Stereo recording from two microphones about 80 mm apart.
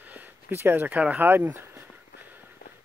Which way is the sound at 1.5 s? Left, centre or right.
Right.